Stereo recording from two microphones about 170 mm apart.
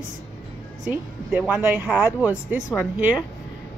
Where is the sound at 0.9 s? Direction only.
10° right (ahead or behind).